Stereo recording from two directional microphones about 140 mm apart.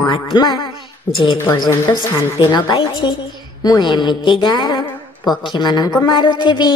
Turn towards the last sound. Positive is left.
turn(degrees=35)  # may be behind; listen again after turning